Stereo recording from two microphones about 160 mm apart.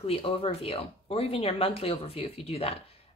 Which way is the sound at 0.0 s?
35° left (ahead or behind).